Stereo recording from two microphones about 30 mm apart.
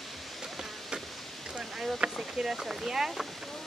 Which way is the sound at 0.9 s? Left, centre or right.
Right.